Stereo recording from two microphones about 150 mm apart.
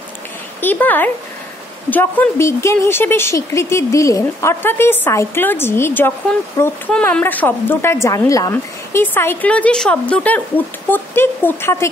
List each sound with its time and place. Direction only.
0.6 s a woman's voice: 10° left (ahead or behind)